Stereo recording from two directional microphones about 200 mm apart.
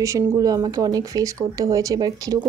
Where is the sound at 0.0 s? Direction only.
15° right (ahead or behind).